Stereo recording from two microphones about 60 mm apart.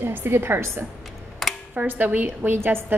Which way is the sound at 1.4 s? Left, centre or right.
Centre.